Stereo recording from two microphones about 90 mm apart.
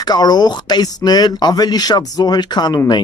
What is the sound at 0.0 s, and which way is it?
Speech, 50° left (ahead or behind).